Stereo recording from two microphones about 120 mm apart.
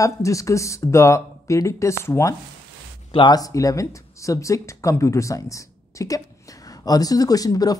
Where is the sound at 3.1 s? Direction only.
40° left (ahead or behind).